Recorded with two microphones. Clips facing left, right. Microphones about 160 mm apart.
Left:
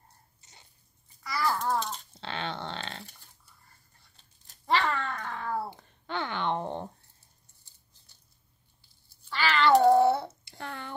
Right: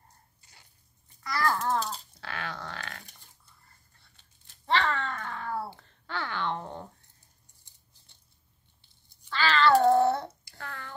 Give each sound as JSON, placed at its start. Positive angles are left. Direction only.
{"t": 0.4, "sound": "frog", "side_deg": 20}
{"t": 1.2, "sound": "babbling", "side_deg": 5}
{"t": 2.1, "sound": "a sound", "side_deg": 25}
{"t": 4.6, "sound": "a sound", "side_deg": 10}
{"t": 9.3, "sound": "babbling", "side_deg": 15}
{"t": 10.4, "sound": "child singing", "side_deg": 15}